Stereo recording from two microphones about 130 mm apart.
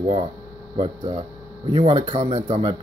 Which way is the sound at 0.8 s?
45° right (ahead or behind).